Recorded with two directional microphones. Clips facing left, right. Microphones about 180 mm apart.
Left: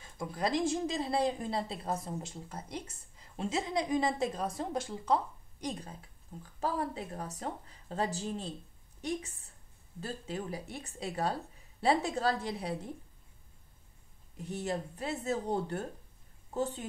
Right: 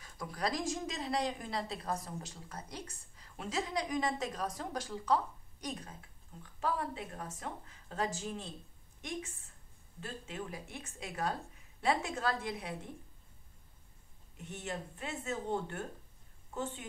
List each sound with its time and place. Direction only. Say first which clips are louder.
0.0 s speech: left 3 dB; 25° left (ahead or behind)
14.3 s speech: left 6 dB; 35° left (ahead or behind)